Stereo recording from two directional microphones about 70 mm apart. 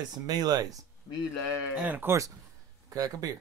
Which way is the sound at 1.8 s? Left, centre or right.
Right.